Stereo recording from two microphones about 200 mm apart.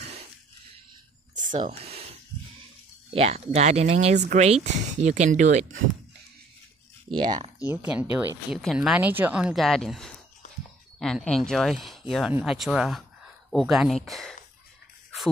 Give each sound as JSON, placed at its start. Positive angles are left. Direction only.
{"t": 1.6, "sound": "speech", "side_deg": -30}
{"t": 7.2, "sound": "speech", "side_deg": -20}
{"t": 7.6, "sound": "speech", "side_deg": -5}